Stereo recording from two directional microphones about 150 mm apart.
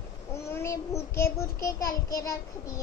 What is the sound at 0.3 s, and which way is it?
Child singing, 15° left (ahead or behind).